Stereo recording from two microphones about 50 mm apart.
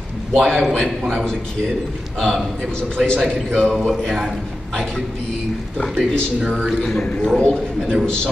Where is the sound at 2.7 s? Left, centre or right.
Centre.